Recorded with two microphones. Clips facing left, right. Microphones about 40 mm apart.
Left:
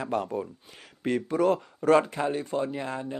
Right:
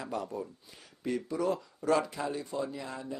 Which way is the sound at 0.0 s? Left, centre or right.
Left.